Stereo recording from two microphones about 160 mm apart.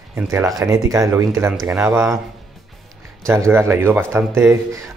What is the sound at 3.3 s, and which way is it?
Speech, 15° right (ahead or behind).